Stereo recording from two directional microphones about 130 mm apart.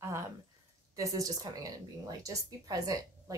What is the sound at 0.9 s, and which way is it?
Speech, 25° right (ahead or behind).